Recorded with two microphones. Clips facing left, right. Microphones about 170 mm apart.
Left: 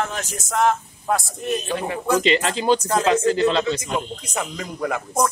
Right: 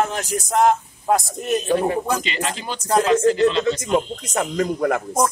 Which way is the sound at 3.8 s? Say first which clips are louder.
Right 6 dB; 70° right (ahead or behind).